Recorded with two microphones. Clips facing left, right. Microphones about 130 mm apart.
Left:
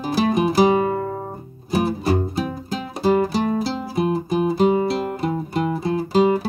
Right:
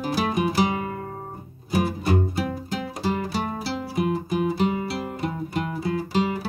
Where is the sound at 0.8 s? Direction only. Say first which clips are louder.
Left 10 dB; 50° left (ahead or behind).